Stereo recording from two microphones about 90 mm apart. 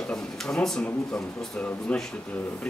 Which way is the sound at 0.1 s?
5° left (ahead or behind).